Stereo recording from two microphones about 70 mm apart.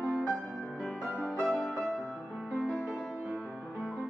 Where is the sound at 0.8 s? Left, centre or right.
Centre.